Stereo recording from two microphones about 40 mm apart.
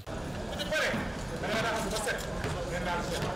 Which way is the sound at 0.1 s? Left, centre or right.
Centre.